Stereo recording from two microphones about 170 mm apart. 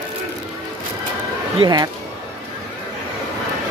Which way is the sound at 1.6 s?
25° right (ahead or behind).